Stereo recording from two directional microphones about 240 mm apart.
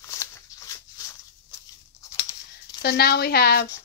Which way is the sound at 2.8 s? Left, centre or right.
Left.